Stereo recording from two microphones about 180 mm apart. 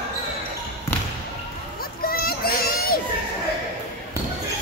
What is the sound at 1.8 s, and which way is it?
Children playing, 55° left (ahead or behind).